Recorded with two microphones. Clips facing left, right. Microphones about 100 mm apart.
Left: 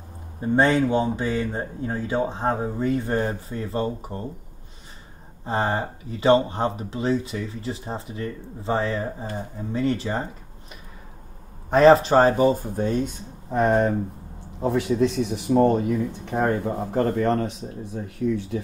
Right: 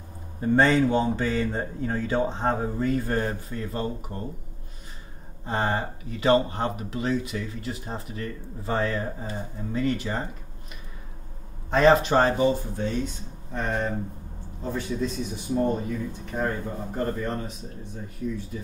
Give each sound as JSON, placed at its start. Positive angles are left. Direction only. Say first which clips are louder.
{"t": 0.4, "sound": "speech", "louder": "left 1 dB", "side_deg": 10}
{"t": 2.8, "sound": "speech", "louder": "left 3 dB", "side_deg": 20}
{"t": 5.4, "sound": "speech", "louder": "left 2 dB", "side_deg": 35}
{"t": 11.7, "sound": "speech", "louder": "left 4 dB", "side_deg": 35}
{"t": 14.6, "sound": "speech", "louder": "left 8 dB", "side_deg": 75}
{"t": 18.0, "sound": "speech", "louder": "left 7 dB", "side_deg": 75}